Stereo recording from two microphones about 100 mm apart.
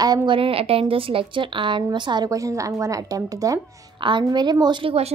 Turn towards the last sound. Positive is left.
turn(degrees=-65)  # may be behind; listen again after turning